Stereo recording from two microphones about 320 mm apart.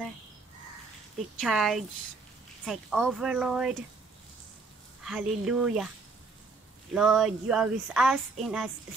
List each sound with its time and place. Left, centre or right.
1.4 s speech: centre
5.0 s speech: centre
6.9 s speech: centre